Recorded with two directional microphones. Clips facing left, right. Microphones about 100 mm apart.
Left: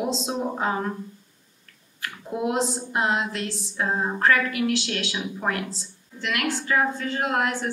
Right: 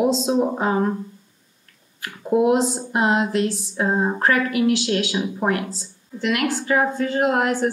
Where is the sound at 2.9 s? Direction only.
25° right (ahead or behind).